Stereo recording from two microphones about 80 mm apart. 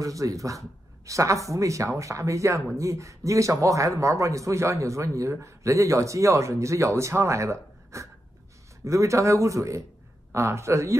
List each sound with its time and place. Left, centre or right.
0.0 s speech: right